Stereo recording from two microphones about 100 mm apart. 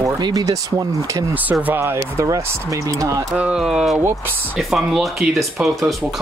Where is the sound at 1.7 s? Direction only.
25° right (ahead or behind).